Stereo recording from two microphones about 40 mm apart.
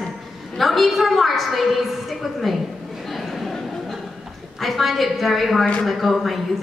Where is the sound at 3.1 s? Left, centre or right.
Centre.